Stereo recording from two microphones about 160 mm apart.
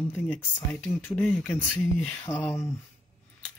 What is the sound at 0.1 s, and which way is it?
A man's voice, 10° left (ahead or behind).